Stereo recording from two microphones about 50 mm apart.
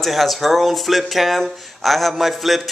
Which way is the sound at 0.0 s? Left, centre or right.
Centre.